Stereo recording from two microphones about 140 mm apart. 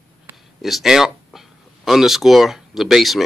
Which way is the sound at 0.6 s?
Centre (ahead or behind).